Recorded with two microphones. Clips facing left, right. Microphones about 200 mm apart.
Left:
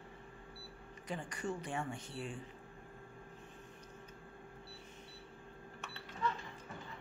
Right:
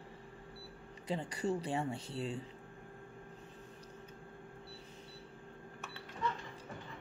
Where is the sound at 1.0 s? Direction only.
35° right (ahead or behind).